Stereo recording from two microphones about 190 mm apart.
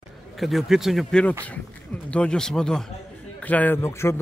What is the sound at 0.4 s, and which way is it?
Speech, centre (ahead or behind).